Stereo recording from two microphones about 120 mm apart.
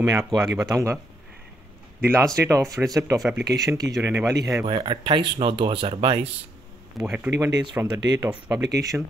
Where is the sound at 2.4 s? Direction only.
25° right (ahead or behind).